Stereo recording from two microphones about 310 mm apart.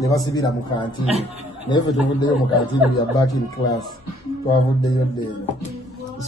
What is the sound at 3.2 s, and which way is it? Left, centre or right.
Speech, centre.